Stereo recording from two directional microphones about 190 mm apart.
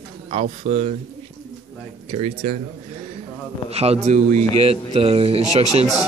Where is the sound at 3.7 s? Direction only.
30° right (ahead or behind).